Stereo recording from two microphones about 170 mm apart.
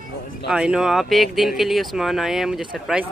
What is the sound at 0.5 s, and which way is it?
Speech, 5° right (ahead or behind).